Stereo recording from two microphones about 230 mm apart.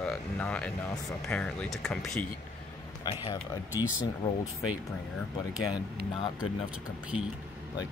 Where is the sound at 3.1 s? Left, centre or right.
Centre.